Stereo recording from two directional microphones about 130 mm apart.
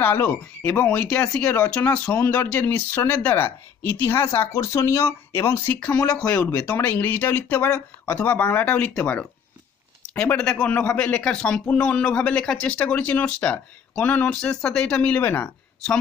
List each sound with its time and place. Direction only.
0.0 s a man's voice: 15° left (ahead or behind)